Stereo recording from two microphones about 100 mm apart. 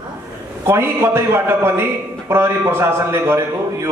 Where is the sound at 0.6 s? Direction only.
25° right (ahead or behind).